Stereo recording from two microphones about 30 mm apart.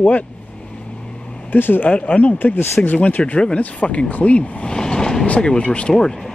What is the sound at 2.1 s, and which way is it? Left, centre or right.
Speech, left.